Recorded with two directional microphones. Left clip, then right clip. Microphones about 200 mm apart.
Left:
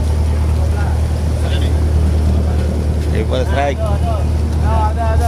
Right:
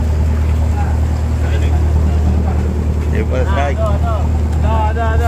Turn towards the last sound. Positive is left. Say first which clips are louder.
# left 1 dB
turn(degrees=20)  # may be behind; listen again after turning